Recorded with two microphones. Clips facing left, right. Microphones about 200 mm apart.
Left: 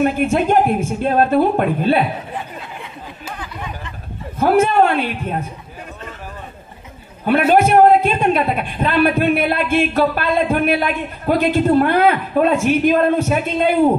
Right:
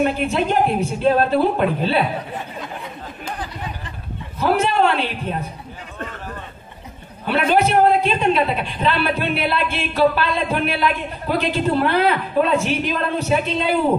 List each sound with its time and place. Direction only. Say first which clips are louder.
0.0 s a man's voice: left 3 dB; 50° left (ahead or behind)
3.3 s a sound: even; 35° right (ahead or behind)
4.4 s a man's voice: left 4 dB; 50° left (ahead or behind)
7.2 s a man's voice: left 4 dB; 50° left (ahead or behind)